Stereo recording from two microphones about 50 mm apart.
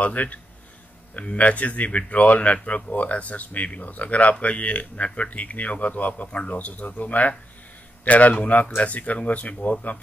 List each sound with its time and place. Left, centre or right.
0.0 s speech: left